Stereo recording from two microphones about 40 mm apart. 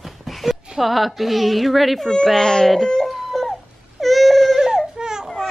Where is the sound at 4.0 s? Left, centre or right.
Centre.